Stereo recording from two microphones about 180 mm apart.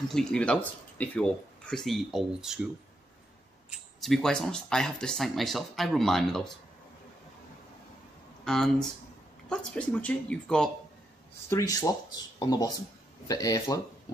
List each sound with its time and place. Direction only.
0.1 s speech: 5° left (ahead or behind)
4.0 s speech: centre (ahead or behind)
8.5 s speech: 5° left (ahead or behind)
11.4 s speech: 20° left (ahead or behind)